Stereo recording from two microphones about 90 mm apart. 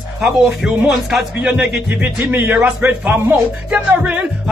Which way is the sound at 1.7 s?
10° right (ahead or behind).